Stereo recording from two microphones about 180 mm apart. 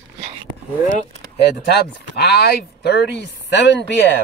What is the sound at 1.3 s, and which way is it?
Speech, 65° left (ahead or behind).